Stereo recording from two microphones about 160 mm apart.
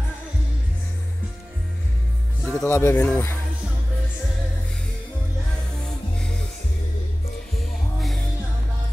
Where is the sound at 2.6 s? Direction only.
15° left (ahead or behind).